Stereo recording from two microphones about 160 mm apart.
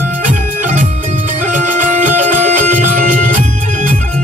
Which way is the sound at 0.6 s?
55° right (ahead or behind).